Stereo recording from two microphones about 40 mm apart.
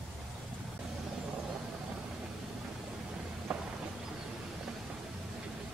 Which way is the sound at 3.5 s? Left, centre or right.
Right.